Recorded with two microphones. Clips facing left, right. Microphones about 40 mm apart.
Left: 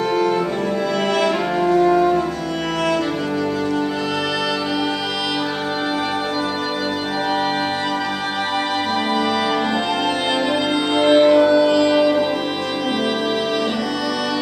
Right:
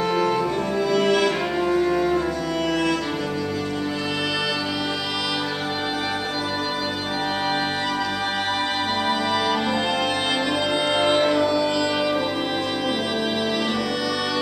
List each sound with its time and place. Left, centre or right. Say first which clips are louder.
0.9 s music: even; centre
11.0 s music: left 8 dB; centre